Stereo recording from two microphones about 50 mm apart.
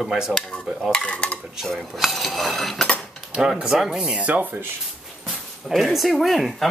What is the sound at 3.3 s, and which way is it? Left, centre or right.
Cutlery, centre.